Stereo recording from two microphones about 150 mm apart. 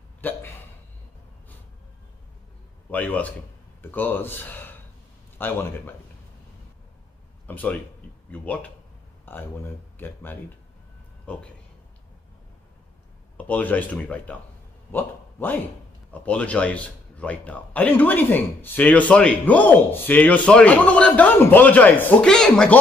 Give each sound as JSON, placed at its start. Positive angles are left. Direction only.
{"t": 0.2, "sound": "hiccup", "side_deg": 10}
{"t": 2.9, "sound": "a man's voice", "side_deg": 10}
{"t": 7.4, "sound": "a man's voice", "side_deg": 10}
{"t": 13.4, "sound": "a man's voice", "side_deg": 10}
{"t": 14.9, "sound": "a sound", "side_deg": 10}
{"t": 16.1, "sound": "a man's voice", "side_deg": 10}